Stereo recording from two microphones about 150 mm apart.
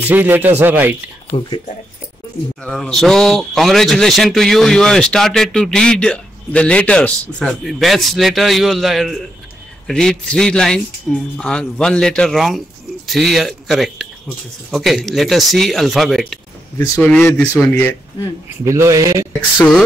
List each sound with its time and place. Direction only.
0.0 s speech: 10° right (ahead or behind)
2.6 s speech: 5° left (ahead or behind)
16.7 s a man's voice: 20° left (ahead or behind)
18.6 s speech: 20° right (ahead or behind)